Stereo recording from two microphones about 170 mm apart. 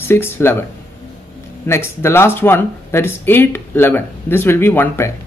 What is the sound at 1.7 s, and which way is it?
Speech, 15° left (ahead or behind).